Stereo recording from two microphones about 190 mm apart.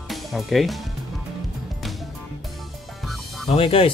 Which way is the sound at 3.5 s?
30° left (ahead or behind).